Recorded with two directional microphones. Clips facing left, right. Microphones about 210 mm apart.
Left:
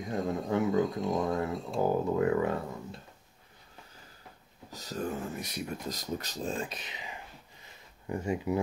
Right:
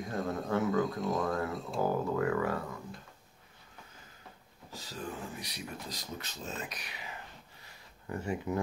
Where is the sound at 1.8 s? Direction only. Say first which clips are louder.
Left 3 dB; 20° left (ahead or behind).